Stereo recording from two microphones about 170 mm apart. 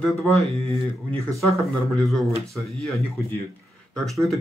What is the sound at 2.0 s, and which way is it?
Speech, centre (ahead or behind).